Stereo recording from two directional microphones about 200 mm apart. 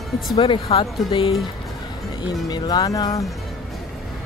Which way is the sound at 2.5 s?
20° left (ahead or behind).